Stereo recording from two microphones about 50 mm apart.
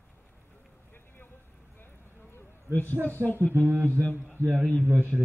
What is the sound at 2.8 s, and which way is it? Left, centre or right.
Speech, right.